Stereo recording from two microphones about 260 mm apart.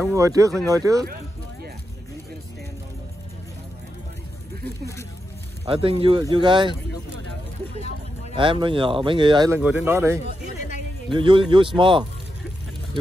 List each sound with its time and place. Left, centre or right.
0.0 s speech: centre
5.7 s speech: right
8.4 s speech: centre
10.2 s a man's voice: left
11.1 s speech: centre